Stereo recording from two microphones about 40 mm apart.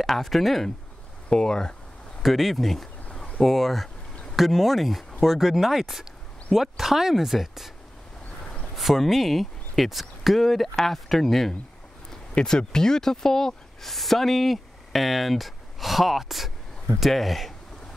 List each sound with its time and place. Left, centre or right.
0.0 s speech: centre
1.3 s speech: centre
2.2 s speech: centre
8.7 s speech: centre
12.4 s speech: centre
13.9 s speech: centre